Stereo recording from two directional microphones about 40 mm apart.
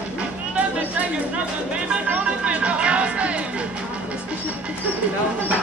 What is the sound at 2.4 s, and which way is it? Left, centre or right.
Music, right.